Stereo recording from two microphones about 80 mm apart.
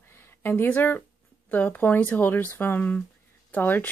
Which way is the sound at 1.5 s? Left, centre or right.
Left.